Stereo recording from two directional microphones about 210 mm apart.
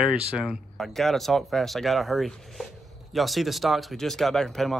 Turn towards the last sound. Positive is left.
turn(degrees=0)  # may be behind; listen again after turning